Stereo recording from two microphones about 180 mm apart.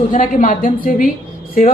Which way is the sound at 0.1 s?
40° left (ahead or behind).